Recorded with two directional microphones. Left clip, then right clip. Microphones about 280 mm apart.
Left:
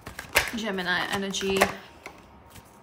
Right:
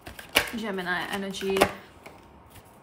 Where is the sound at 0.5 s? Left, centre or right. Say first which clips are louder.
Left 2 dB; centre.